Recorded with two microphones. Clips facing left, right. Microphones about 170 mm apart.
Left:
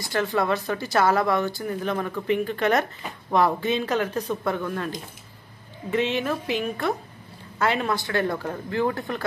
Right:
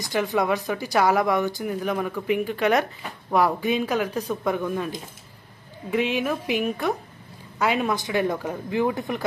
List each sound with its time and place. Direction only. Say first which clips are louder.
0.0 s speech: right 1 dB; 15° right (ahead or behind)